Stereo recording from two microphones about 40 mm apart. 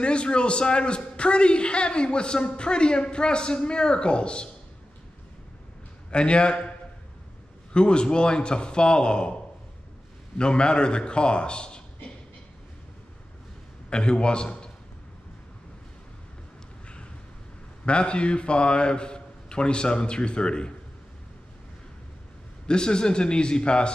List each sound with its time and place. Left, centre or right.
0.0 s a man's voice: left
6.0 s a man's voice: left
7.7 s a man's voice: left
13.8 s a man's voice: left
17.8 s a man's voice: left
22.7 s a man's voice: left